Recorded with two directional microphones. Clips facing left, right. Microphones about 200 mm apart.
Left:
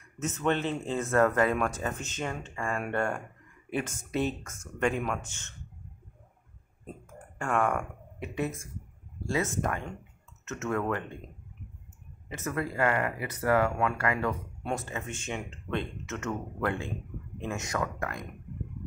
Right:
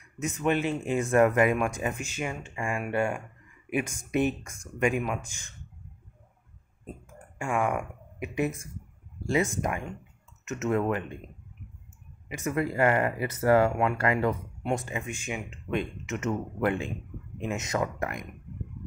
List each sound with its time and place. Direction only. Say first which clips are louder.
0.2 s speech: right 2 dB; 10° right (ahead or behind)
7.3 s speech: even; 10° right (ahead or behind)
12.4 s speech: right 4 dB; 15° right (ahead or behind)